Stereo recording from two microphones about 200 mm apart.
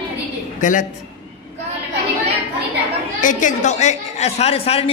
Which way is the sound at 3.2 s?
40° left (ahead or behind).